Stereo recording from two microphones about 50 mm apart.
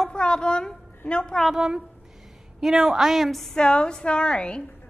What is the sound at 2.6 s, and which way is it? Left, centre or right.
Speech, centre.